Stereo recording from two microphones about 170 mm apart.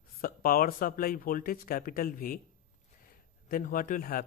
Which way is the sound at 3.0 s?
55° left (ahead or behind).